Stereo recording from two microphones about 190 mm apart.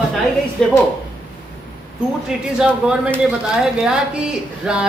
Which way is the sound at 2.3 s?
5° right (ahead or behind).